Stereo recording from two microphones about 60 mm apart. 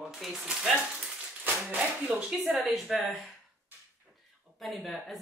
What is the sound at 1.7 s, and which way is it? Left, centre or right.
Speech, right.